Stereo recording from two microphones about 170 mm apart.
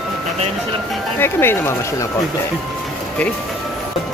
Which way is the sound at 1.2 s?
15° left (ahead or behind).